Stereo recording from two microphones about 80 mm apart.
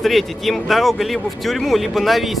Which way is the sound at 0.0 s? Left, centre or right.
Centre.